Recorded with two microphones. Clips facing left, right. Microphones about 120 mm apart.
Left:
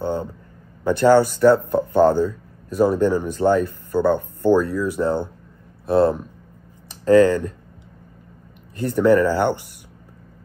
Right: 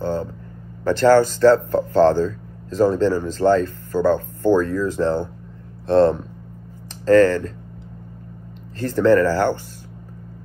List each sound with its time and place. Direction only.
0.0 s a sound: 15° left (ahead or behind)
0.8 s speech: 15° left (ahead or behind)
8.7 s speech: 15° left (ahead or behind)